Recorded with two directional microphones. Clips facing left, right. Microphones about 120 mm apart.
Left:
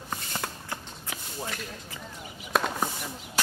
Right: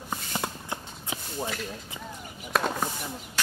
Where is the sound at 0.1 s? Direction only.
15° right (ahead or behind).